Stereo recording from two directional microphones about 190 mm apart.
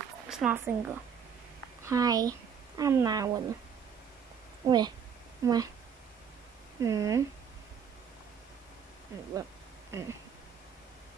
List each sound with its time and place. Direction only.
0.3 s speech: 5° right (ahead or behind)
1.9 s speech: 20° right (ahead or behind)
4.6 s speech: 20° right (ahead or behind)
6.8 s speech: 15° right (ahead or behind)
9.8 s a sound: 15° right (ahead or behind)